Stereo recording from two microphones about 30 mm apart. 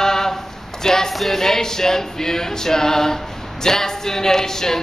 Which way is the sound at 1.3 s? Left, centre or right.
Centre.